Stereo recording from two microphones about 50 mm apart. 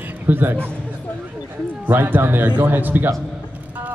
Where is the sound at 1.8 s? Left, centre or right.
Right.